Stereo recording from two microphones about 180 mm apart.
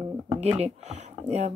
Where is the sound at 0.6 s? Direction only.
40° right (ahead or behind).